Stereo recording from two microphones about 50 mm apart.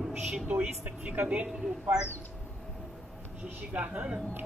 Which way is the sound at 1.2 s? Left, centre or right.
Right.